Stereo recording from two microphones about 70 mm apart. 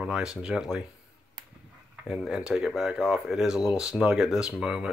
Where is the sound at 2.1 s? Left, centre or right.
Centre.